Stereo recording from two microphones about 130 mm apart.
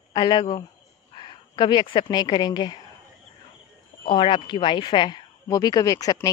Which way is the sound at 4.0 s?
40° left (ahead or behind).